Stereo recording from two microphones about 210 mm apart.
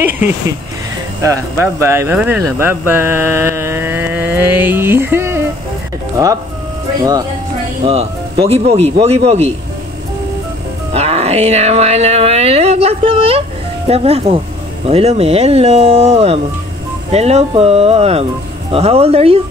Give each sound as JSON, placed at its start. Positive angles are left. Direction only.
{"t": 1.2, "sound": "speech", "side_deg": -15}
{"t": 7.8, "sound": "speech", "side_deg": -30}
{"t": 10.9, "sound": "speech", "side_deg": -30}